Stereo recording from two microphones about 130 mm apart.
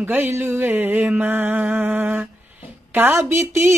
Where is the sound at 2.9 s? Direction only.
15° right (ahead or behind).